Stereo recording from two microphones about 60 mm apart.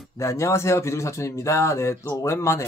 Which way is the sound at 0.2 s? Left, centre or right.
Left.